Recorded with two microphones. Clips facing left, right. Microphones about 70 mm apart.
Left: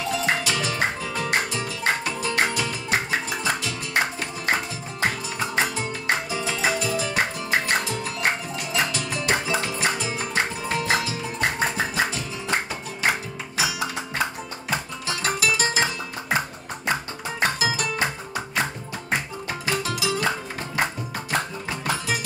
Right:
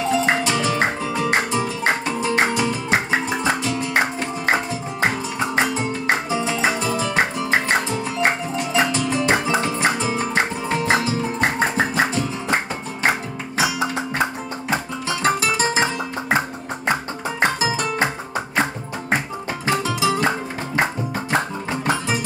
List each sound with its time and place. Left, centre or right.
0.1 s music: right
5.6 s music: right
13.6 s music: right